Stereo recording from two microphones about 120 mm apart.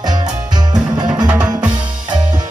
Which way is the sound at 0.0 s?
35° right (ahead or behind).